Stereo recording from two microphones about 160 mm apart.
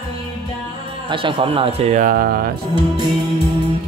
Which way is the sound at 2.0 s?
65° right (ahead or behind).